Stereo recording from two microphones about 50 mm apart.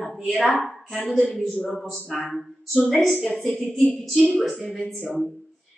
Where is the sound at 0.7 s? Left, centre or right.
Centre.